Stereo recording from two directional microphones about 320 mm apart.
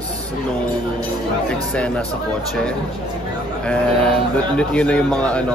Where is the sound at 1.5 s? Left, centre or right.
Centre.